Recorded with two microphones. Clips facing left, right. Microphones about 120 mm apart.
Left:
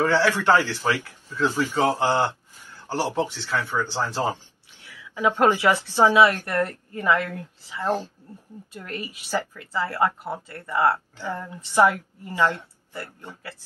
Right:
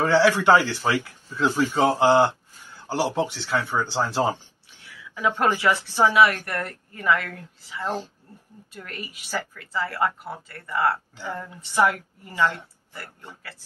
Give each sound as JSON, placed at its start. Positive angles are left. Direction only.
{"t": 0.0, "sound": "speech", "side_deg": -10}
{"t": 5.1, "sound": "speech", "side_deg": 20}
{"t": 8.7, "sound": "speech", "side_deg": 25}